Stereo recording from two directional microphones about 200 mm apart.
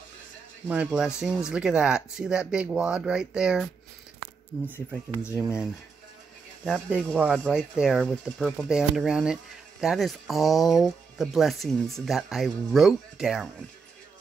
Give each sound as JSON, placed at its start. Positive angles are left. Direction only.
{"t": 0.7, "sound": "speech", "side_deg": -5}
{"t": 4.7, "sound": "speech", "side_deg": 15}
{"t": 6.6, "sound": "speech", "side_deg": 0}